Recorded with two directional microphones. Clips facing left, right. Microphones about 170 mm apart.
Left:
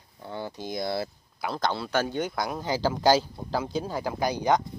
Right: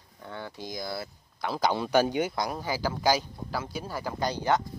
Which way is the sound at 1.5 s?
10° right (ahead or behind).